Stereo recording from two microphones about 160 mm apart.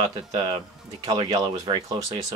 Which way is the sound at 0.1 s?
25° right (ahead or behind).